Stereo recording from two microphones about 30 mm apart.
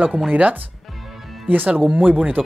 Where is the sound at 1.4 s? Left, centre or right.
Right.